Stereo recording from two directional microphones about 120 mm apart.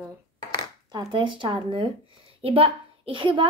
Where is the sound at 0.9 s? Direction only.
40° right (ahead or behind).